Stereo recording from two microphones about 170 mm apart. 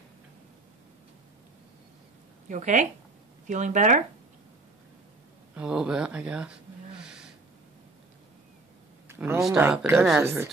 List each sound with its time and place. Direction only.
2.4 s speech: 45° right (ahead or behind)
5.6 s speech: 5° right (ahead or behind)
9.0 s a sound: 15° right (ahead or behind)
9.6 s speech: 10° right (ahead or behind)
9.9 s speech: centre (ahead or behind)
10.2 s speech: 15° right (ahead or behind)